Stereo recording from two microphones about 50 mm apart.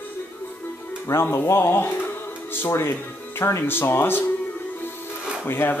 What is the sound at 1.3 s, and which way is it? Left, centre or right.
Speech, left.